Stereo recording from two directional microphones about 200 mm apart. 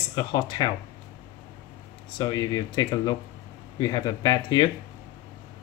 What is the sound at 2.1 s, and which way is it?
Speech, 20° left (ahead or behind).